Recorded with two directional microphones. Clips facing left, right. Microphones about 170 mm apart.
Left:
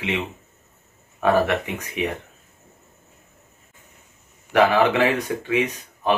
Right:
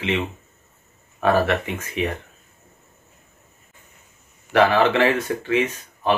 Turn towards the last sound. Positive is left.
turn(degrees=15)  # may be behind; listen again after turning